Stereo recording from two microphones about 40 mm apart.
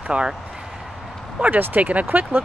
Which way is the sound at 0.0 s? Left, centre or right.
Right.